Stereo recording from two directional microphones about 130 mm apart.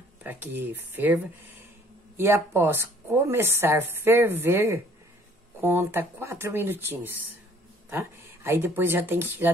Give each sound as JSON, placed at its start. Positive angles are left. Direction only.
{"t": 0.2, "sound": "speech", "side_deg": -15}